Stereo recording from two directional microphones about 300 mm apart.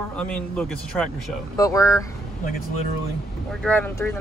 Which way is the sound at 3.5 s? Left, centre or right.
Centre.